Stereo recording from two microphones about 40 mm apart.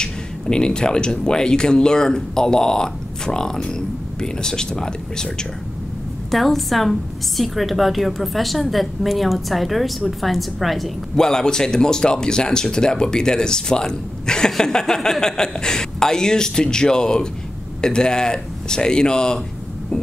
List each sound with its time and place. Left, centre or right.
0.0 s speech: left
6.3 s a woman's voice: centre
11.1 s speech: centre